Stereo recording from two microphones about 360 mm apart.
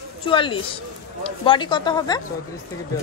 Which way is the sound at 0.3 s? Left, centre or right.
Centre.